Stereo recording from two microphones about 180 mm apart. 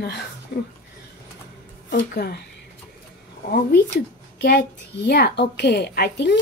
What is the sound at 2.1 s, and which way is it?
Speech, 65° left (ahead or behind).